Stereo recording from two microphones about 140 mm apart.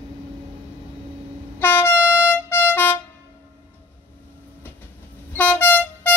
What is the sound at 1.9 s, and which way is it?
Air horn, 10° right (ahead or behind).